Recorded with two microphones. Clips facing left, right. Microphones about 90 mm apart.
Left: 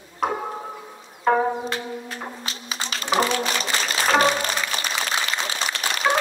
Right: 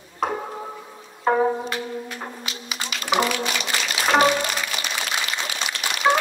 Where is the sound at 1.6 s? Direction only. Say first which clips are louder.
Even; 35° left (ahead or behind).